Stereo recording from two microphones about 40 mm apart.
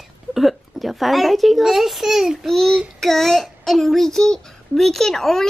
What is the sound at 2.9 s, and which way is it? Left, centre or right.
A child's voice, centre.